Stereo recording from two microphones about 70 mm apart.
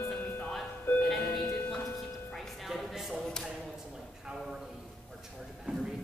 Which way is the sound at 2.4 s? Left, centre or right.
Centre.